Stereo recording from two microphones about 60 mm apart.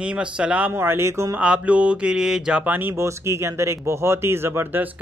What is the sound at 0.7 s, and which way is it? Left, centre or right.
Speech, right.